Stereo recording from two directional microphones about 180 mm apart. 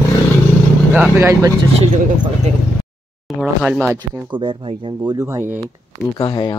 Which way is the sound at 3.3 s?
Centre (ahead or behind).